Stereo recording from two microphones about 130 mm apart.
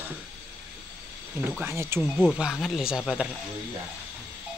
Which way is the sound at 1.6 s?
20° right (ahead or behind).